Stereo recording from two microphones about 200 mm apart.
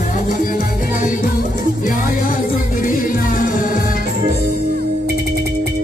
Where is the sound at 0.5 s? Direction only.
40° left (ahead or behind).